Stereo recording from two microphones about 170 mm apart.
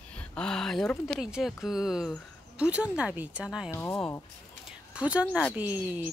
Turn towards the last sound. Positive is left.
turn(degrees=-10)  # may be behind; listen again after turning